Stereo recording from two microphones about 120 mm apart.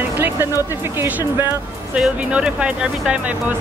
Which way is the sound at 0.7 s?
20° right (ahead or behind).